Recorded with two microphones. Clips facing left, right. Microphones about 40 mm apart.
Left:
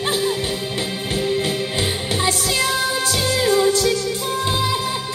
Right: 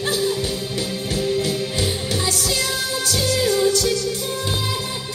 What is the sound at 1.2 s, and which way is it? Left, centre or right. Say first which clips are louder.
Music: even; left.